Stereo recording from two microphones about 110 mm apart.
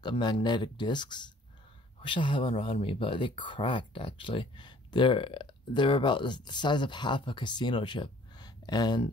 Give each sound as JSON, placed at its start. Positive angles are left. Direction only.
{"t": 0.2, "sound": "speech", "side_deg": 40}